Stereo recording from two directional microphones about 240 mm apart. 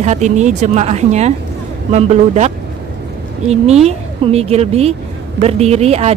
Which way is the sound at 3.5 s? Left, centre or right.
Right.